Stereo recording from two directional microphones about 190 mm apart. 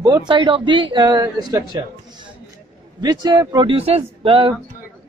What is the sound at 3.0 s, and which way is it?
A man's voice, 20° right (ahead or behind).